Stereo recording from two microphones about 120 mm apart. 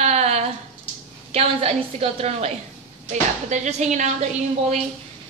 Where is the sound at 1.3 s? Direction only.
55° right (ahead or behind).